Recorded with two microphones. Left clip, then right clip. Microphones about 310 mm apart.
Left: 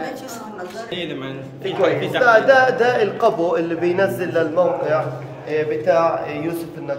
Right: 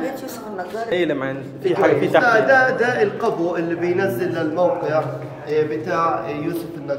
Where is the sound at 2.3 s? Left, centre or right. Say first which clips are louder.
Left 5 dB; left.